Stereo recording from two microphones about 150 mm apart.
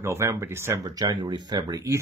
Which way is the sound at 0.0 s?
20° right (ahead or behind).